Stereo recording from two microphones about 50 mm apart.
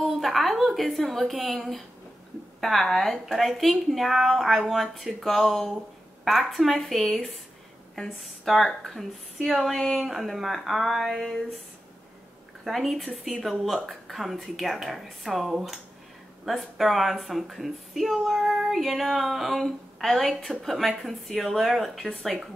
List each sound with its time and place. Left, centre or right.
0.0 s a woman's voice: centre
12.6 s a woman's voice: centre